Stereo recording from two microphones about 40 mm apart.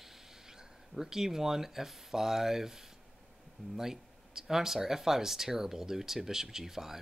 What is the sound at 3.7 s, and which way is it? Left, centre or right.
Speech, centre.